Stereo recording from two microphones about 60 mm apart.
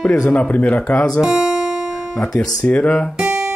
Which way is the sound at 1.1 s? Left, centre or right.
Centre.